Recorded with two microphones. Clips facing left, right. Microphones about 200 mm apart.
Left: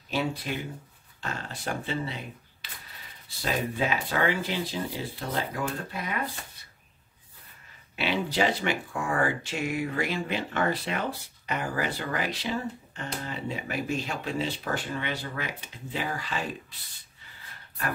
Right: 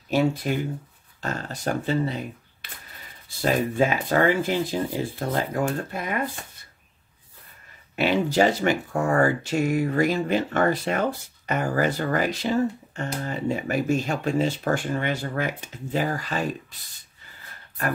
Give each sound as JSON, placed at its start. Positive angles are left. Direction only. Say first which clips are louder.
{"t": 0.1, "sound": "speech", "louder": "right 7 dB", "side_deg": -45}
{"t": 7.9, "sound": "speech", "louder": "right 7 dB", "side_deg": -45}